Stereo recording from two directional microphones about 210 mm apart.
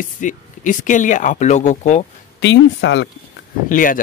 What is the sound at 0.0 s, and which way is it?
Speech, 35° left (ahead or behind).